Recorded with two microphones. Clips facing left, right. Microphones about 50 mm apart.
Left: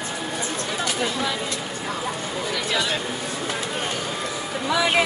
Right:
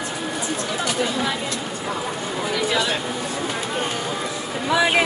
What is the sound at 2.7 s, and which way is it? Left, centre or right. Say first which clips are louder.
Speech: right 1 dB; centre.